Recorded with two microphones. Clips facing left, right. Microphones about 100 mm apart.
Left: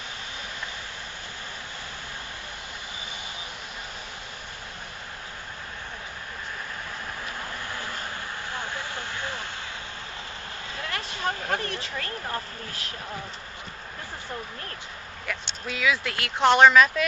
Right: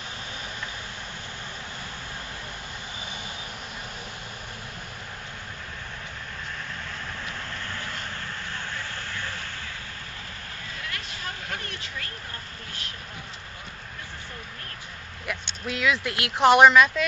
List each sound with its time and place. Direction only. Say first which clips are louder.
8.5 s vehicle: left 2 dB; 15° left (ahead or behind)
10.9 s vehicle: left 8 dB; 35° left (ahead or behind)
15.2 s speech: right 1 dB; centre (ahead or behind)